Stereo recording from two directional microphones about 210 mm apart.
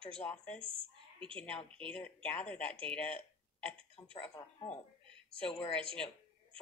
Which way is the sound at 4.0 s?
20° left (ahead or behind).